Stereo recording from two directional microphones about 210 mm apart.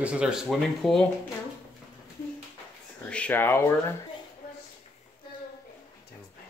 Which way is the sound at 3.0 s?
5° left (ahead or behind).